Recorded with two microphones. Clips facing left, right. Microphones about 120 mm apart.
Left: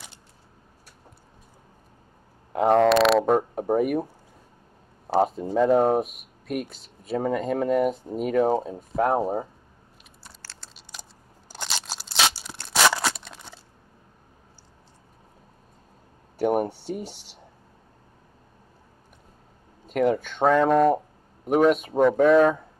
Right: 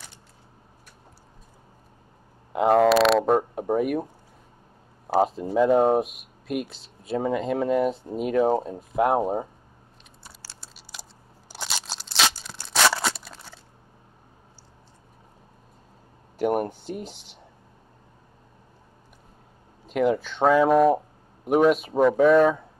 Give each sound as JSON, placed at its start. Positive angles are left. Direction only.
{"t": 2.5, "sound": "speech", "side_deg": -5}
{"t": 5.0, "sound": "a sound", "side_deg": -5}
{"t": 5.4, "sound": "speech", "side_deg": 0}
{"t": 10.2, "sound": "a sound", "side_deg": -10}
{"t": 12.7, "sound": "scissors", "side_deg": 0}
{"t": 16.3, "sound": "speech", "side_deg": 0}
{"t": 19.9, "sound": "speech", "side_deg": -5}